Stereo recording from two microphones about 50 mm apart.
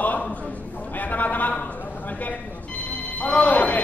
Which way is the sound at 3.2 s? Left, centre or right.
Left.